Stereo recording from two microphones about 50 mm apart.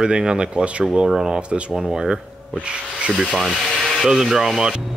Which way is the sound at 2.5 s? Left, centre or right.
Right.